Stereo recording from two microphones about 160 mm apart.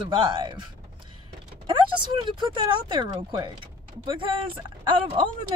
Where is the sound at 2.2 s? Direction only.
30° right (ahead or behind).